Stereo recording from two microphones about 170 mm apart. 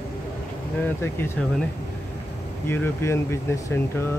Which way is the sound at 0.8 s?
15° left (ahead or behind).